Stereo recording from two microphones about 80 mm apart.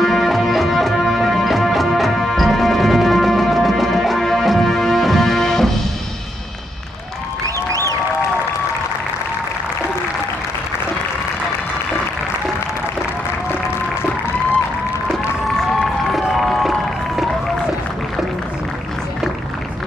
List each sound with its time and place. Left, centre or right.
0.0 s music: centre
7.4 s a sound: right
15.8 s run: centre